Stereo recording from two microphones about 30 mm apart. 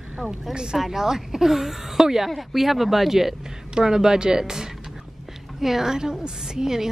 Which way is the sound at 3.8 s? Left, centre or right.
Centre.